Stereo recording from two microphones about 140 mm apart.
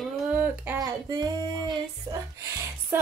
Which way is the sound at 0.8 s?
25° right (ahead or behind).